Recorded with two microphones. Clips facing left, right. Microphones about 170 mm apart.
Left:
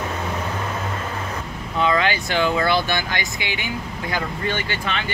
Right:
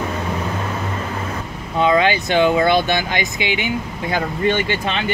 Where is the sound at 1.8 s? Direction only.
20° right (ahead or behind).